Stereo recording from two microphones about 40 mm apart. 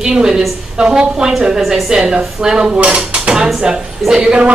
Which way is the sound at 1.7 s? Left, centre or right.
Centre.